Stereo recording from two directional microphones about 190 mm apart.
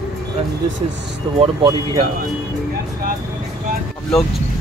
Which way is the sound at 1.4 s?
25° right (ahead or behind).